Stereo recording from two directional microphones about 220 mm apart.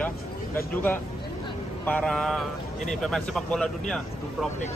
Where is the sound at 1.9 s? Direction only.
5° left (ahead or behind).